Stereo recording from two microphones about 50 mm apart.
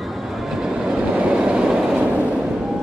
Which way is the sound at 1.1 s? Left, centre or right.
Right.